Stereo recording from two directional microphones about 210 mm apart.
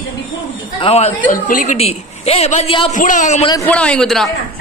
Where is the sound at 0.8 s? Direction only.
30° left (ahead or behind).